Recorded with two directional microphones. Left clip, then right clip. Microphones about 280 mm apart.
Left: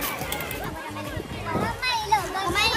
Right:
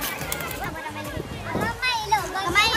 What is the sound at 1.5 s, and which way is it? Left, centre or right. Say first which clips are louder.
Children playing: right 1 dB; centre.